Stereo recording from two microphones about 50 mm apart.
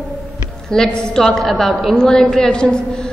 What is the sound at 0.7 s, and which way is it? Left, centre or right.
A woman's voice, centre.